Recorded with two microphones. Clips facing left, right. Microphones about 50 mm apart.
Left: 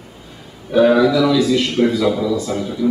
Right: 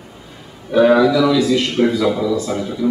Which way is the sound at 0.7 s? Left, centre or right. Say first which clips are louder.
Right 1 dB; centre.